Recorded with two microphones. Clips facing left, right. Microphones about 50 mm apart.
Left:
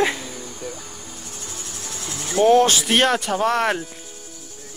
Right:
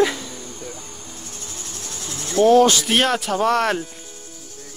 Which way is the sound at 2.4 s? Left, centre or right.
Left.